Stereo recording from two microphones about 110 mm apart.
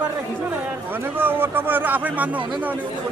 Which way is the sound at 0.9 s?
20° right (ahead or behind).